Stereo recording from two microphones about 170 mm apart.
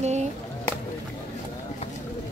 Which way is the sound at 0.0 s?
40° right (ahead or behind).